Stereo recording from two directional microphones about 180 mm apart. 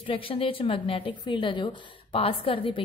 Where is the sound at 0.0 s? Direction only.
30° left (ahead or behind).